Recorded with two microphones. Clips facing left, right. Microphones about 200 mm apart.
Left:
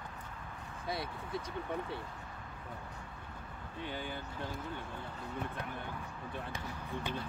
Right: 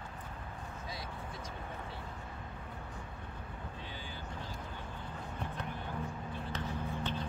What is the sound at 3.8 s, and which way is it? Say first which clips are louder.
Speech: left 6 dB; 60° left (ahead or behind).